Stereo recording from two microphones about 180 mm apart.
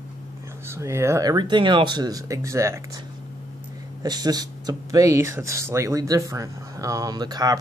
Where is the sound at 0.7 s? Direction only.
15° right (ahead or behind).